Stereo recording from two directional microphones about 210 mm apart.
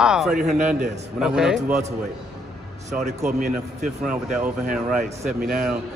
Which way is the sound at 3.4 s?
45° right (ahead or behind).